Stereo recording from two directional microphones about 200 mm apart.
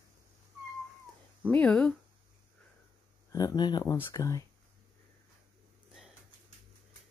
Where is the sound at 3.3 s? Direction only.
20° left (ahead or behind).